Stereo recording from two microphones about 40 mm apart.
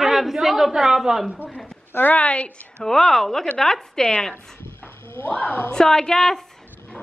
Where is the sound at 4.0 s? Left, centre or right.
Left.